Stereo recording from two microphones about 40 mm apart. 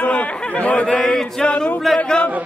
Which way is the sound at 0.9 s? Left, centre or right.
Centre.